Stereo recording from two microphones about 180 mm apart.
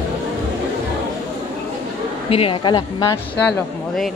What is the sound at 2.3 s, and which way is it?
Speech, 30° left (ahead or behind).